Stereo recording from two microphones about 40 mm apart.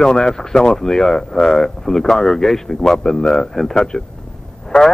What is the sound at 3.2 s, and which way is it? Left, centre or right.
Speech, left.